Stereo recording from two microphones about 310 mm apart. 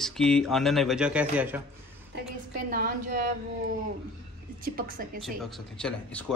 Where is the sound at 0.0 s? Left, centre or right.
Centre.